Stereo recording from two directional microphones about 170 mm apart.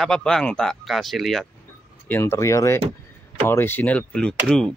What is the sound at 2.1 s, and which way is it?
A man's voice, 15° left (ahead or behind).